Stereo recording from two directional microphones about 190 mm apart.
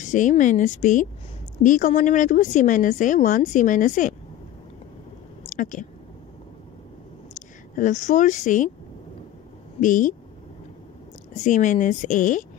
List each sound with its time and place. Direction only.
0.0 s a woman's voice: 40° left (ahead or behind)
5.5 s speech: 40° left (ahead or behind)
7.3 s speech: 40° left (ahead or behind)
9.8 s speech: 45° left (ahead or behind)
11.4 s a woman's voice: 40° left (ahead or behind)